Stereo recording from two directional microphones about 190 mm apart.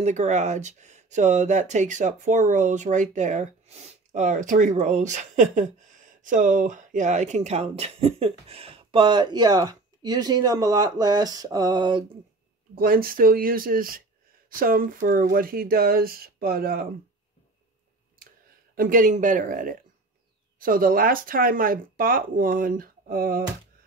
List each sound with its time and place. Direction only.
0.0 s speech: 40° right (ahead or behind); by 12.0 s 20° right (ahead or behind)
12.7 s speech: 50° right (ahead or behind)
18.8 s speech: 45° right (ahead or behind)